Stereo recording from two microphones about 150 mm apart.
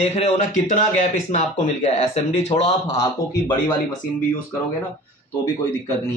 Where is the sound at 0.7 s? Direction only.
55° left (ahead or behind).